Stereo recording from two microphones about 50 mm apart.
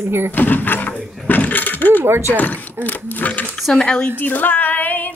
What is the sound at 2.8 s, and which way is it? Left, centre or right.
Speech, left.